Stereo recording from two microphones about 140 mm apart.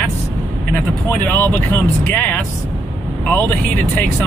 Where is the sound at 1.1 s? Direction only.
15° left (ahead or behind).